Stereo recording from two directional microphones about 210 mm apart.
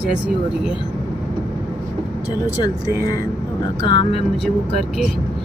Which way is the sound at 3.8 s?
20° left (ahead or behind).